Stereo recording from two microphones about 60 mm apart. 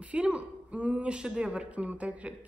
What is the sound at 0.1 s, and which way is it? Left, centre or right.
A woman's voice, centre.